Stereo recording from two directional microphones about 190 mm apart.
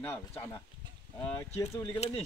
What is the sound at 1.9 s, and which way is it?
Speech, 30° left (ahead or behind).